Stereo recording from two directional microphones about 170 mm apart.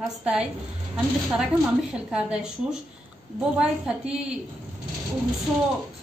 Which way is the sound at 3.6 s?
5° right (ahead or behind).